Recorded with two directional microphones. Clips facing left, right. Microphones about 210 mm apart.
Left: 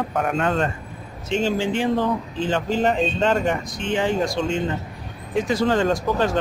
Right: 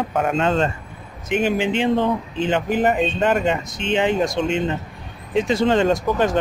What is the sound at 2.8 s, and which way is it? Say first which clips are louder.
Speech: even; 5° right (ahead or behind).